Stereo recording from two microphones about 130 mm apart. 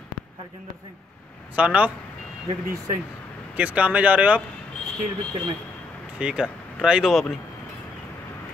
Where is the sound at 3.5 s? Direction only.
10° right (ahead or behind).